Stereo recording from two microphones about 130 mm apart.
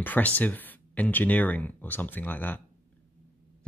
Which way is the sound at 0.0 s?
10° left (ahead or behind).